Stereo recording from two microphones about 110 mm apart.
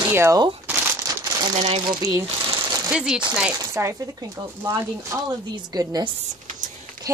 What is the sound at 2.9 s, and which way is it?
Speech, 5° right (ahead or behind).